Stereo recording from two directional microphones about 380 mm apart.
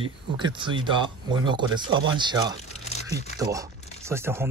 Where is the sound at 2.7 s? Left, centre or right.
Centre.